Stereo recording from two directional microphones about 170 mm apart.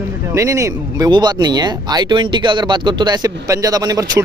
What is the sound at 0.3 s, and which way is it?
Speech, 15° right (ahead or behind).